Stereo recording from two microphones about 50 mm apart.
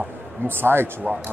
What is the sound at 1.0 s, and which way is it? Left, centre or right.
Speech, centre.